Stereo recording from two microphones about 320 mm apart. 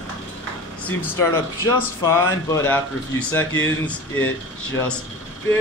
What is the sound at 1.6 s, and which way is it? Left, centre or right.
Speech, centre.